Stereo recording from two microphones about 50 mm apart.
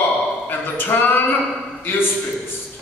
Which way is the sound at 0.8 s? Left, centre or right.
Left.